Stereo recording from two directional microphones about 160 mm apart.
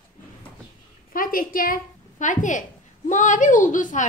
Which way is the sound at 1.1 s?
60° left (ahead or behind).